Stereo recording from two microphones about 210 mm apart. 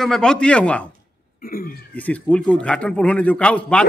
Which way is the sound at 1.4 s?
45° left (ahead or behind).